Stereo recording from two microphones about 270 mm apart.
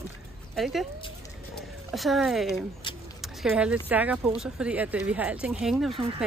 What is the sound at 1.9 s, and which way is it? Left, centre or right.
Speech, centre.